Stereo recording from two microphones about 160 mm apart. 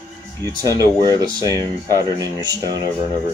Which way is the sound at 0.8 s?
25° right (ahead or behind).